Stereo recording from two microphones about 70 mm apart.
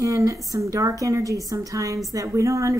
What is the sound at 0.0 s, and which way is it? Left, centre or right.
A woman's voice, right.